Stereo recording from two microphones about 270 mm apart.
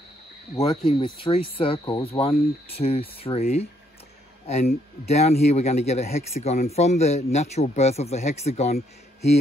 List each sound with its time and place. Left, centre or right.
0.6 s speech: centre
5.0 s speech: left